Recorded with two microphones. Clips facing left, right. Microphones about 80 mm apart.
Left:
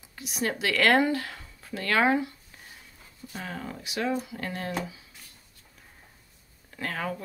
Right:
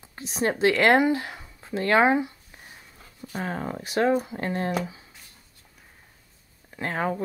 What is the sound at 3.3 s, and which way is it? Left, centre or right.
Speech, right.